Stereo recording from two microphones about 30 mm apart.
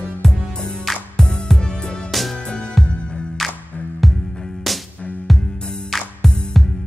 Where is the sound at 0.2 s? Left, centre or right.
Centre.